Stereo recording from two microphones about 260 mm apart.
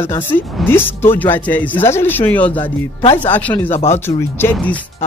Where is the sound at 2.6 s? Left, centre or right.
Left.